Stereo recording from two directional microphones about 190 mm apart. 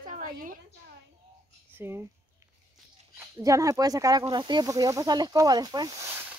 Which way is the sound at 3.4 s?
15° right (ahead or behind).